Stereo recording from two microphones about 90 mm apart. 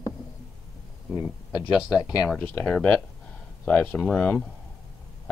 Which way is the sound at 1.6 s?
10° right (ahead or behind).